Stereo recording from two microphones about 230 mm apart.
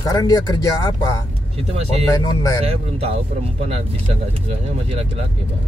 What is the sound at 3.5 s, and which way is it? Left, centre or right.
Speech, right.